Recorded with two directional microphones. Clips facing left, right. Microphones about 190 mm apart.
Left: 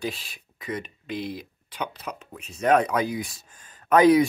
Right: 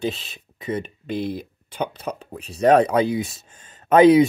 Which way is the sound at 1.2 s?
55° right (ahead or behind).